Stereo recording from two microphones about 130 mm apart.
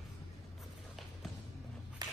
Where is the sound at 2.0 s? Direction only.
30° right (ahead or behind).